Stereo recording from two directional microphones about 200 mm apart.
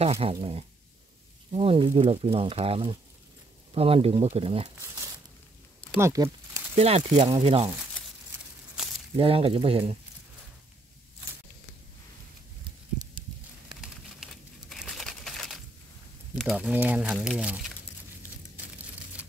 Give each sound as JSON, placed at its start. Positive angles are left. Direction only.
{"t": 0.0, "sound": "speech", "side_deg": -30}
{"t": 5.9, "sound": "speech", "side_deg": -15}
{"t": 6.7, "sound": "speech", "side_deg": -30}
{"t": 8.8, "sound": "a sound", "side_deg": -5}
{"t": 9.1, "sound": "speech", "side_deg": -25}
{"t": 13.7, "sound": "crumpling", "side_deg": 0}
{"t": 16.3, "sound": "speech", "side_deg": 0}